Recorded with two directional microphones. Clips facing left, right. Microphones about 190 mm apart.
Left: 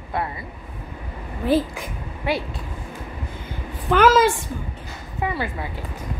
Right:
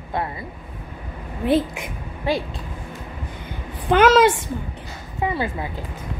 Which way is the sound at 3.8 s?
20° right (ahead or behind).